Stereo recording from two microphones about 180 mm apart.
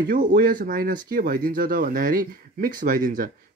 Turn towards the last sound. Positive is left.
turn(degrees=-50)  # may be behind; listen again after turning